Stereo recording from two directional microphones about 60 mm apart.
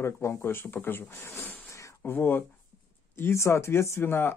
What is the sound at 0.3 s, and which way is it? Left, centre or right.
Speech, left.